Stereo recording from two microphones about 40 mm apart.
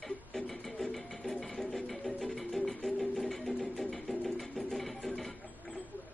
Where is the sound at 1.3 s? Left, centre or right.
Centre.